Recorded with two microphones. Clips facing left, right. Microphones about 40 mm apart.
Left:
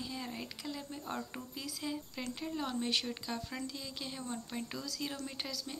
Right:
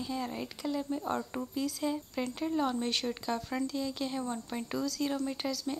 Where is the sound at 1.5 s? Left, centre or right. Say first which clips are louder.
Right 8 dB; centre.